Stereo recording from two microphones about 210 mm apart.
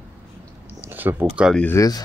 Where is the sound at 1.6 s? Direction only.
10° left (ahead or behind).